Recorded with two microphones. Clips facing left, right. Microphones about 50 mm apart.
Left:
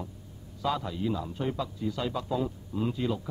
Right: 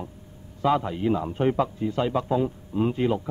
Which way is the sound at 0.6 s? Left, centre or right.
Right.